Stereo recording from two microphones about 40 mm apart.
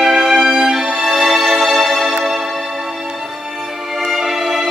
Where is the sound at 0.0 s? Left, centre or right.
Centre.